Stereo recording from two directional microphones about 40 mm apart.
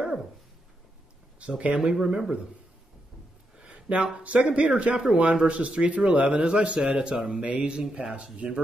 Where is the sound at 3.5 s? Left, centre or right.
Right.